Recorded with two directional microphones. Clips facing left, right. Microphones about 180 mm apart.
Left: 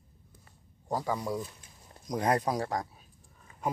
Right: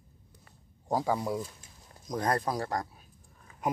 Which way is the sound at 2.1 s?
10° left (ahead or behind).